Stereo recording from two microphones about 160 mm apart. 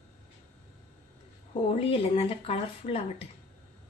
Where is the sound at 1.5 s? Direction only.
35° left (ahead or behind).